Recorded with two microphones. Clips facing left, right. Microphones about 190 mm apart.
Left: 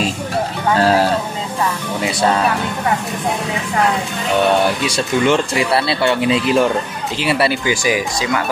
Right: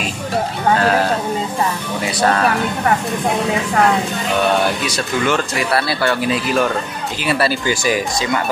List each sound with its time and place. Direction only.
0.7 s speech: 35° left (ahead or behind)
4.8 s speech: 25° left (ahead or behind)
7.6 s speech: 10° left (ahead or behind)